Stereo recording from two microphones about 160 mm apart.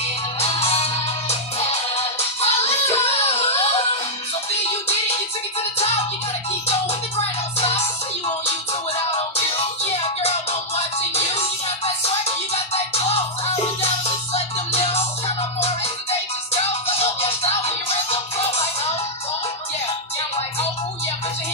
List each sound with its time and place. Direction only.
0.4 s music: 40° left (ahead or behind)
6.7 s music: 40° left (ahead or behind)
11.0 s music: 40° left (ahead or behind)
14.3 s music: 40° left (ahead or behind)